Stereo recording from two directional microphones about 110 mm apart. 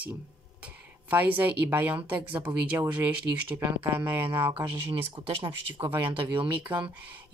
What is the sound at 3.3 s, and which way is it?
Speech, 30° right (ahead or behind).